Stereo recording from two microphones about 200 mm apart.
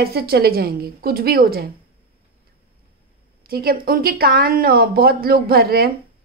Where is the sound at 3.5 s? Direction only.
50° right (ahead or behind).